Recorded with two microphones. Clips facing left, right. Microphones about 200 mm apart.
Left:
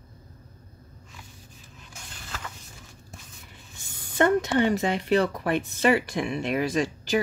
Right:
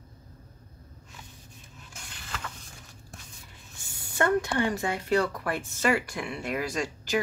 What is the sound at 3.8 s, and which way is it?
Speech, 20° left (ahead or behind).